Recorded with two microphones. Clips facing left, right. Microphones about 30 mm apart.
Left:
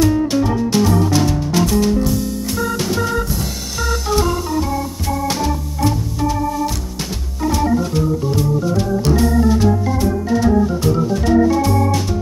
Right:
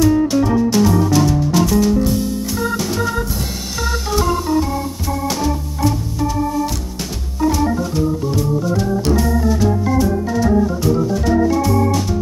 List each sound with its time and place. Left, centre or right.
0.7 s music: centre
9.2 s organ: left
10.4 s organ: centre